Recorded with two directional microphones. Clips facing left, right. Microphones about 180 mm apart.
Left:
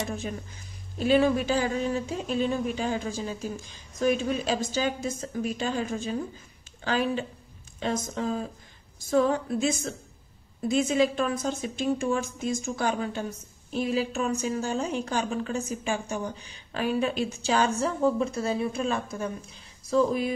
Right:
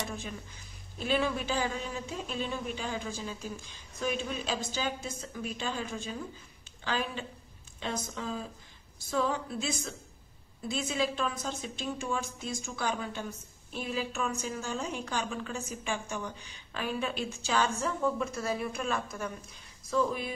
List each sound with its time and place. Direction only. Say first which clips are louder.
0.9 s a woman's voice: left 8 dB; 40° left (ahead or behind)